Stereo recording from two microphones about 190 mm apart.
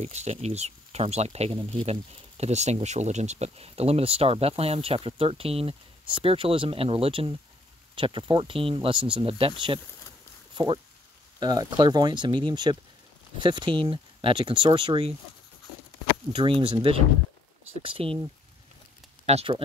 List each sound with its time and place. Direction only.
0.0 s speech: 35° right (ahead or behind)
10.5 s a sound: 25° right (ahead or behind)
11.3 s speech: 20° right (ahead or behind)
16.3 s speech: 25° right (ahead or behind)
19.2 s speech: 35° right (ahead or behind)